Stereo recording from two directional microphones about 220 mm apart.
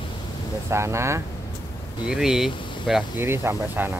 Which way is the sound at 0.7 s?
10° right (ahead or behind).